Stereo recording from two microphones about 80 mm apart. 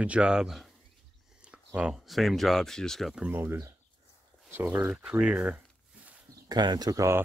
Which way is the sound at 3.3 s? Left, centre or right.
Right.